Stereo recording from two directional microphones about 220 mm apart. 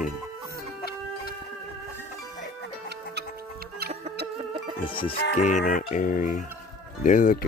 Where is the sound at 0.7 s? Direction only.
40° left (ahead or behind).